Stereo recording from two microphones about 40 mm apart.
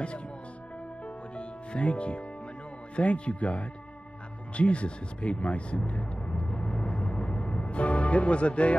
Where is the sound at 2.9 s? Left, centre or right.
Left.